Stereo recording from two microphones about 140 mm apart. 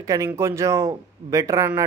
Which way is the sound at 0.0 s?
25° right (ahead or behind).